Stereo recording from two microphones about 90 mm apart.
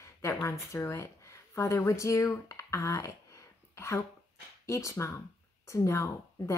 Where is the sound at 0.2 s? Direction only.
30° left (ahead or behind).